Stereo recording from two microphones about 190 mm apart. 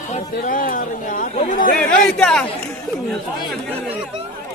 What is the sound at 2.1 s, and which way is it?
Speech, 5° left (ahead or behind).